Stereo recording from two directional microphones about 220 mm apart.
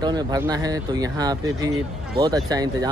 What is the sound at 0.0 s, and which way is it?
Speech, 15° right (ahead or behind).